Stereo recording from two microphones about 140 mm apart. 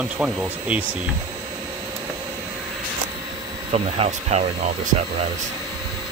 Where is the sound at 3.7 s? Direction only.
45° right (ahead or behind).